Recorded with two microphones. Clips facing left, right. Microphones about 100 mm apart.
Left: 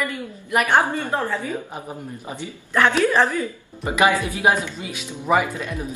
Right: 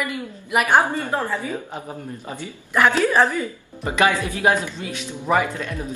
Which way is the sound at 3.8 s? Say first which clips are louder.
Left 1 dB; 15° left (ahead or behind).